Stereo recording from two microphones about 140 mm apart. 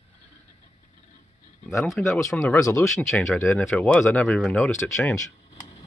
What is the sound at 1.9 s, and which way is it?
Speech, centre (ahead or behind).